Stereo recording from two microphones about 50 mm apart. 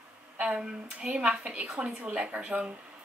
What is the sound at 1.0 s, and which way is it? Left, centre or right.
A woman's voice, right.